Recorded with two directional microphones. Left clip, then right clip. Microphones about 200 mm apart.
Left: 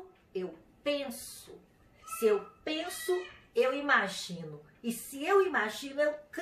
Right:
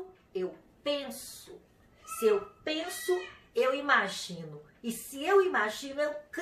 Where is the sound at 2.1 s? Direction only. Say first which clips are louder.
Right 1 dB; 5° right (ahead or behind).